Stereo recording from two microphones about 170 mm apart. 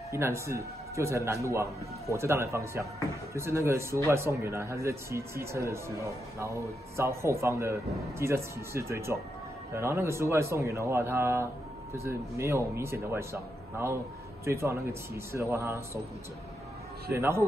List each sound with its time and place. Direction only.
0.1 s a man's voice: 15° right (ahead or behind)
7.0 s a man's voice: 15° right (ahead or behind)
17.1 s a man's voice: 15° right (ahead or behind)